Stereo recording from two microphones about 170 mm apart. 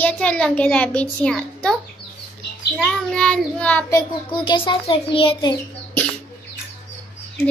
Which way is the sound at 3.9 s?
25° left (ahead or behind).